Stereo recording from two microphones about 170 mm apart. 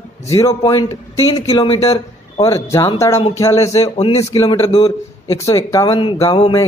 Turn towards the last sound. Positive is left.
turn(degrees=30)  # may be behind; listen again after turning